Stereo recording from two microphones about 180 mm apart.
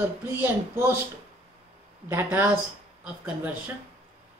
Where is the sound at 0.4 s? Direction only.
10° right (ahead or behind).